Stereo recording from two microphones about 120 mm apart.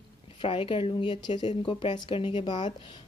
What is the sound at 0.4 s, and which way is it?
Speech, 45° left (ahead or behind).